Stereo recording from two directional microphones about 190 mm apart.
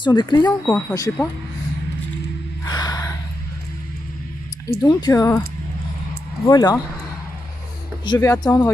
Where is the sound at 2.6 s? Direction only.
20° left (ahead or behind).